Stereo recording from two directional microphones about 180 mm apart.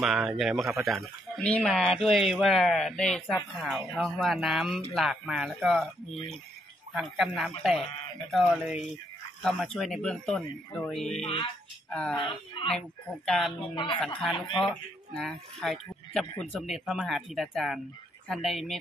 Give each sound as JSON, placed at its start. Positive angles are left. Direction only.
{"t": 0.0, "sound": "speech", "side_deg": -5}
{"t": 6.9, "sound": "speech", "side_deg": 0}
{"t": 12.2, "sound": "speech", "side_deg": 25}
{"t": 12.7, "sound": "speech", "side_deg": 5}
{"t": 13.6, "sound": "speech", "side_deg": 30}
{"t": 13.9, "sound": "speech", "side_deg": 0}